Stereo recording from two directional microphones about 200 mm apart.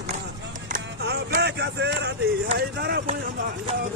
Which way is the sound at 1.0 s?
55° right (ahead or behind).